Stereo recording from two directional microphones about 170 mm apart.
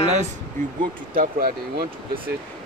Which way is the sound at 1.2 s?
55° right (ahead or behind).